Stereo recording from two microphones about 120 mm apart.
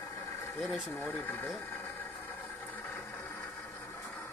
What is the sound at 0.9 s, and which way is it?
Speech, 15° left (ahead or behind).